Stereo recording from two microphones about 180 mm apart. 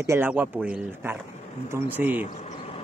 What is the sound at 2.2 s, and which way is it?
Vehicle, 40° left (ahead or behind).